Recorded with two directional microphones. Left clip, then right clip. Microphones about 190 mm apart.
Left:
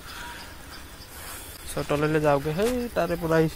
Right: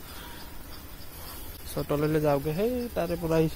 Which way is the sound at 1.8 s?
Centre (ahead or behind).